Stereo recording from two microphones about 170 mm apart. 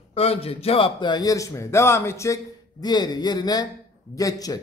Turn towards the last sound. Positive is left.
turn(degrees=20)  # may be behind; listen again after turning